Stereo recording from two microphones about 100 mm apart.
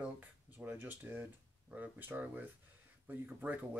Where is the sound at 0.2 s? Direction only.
20° right (ahead or behind).